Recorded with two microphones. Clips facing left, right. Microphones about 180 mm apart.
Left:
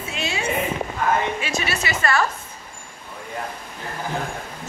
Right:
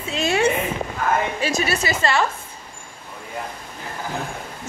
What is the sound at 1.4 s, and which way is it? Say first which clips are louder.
Speech: right 4 dB; 40° right (ahead or behind).